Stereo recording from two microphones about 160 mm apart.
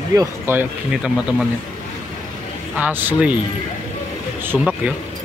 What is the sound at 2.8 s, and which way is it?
Speech, 10° right (ahead or behind).